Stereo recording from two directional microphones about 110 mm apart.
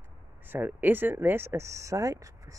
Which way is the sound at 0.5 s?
15° right (ahead or behind).